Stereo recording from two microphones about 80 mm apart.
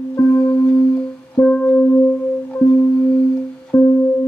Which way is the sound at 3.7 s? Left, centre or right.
Left.